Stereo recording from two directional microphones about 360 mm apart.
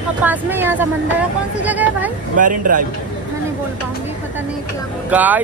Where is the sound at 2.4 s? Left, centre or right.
Right.